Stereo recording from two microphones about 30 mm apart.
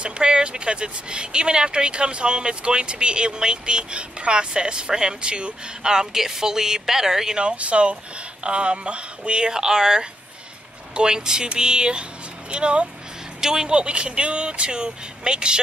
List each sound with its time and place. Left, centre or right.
0.0 s a woman's voice: right; by 7.3 s centre
7.5 s speech: right
9.5 s speech: right
13.4 s speech: centre
13.7 s speech: right